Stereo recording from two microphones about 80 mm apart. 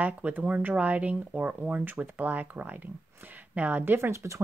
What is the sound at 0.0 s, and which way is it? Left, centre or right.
Speech, centre.